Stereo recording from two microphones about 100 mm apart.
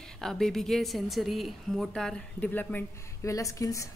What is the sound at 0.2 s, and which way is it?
A woman's voice, 5° left (ahead or behind).